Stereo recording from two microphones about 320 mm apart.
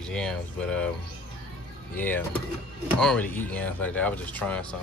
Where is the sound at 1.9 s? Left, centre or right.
Centre.